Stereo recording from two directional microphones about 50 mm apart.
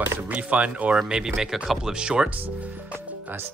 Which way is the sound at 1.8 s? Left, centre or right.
Centre.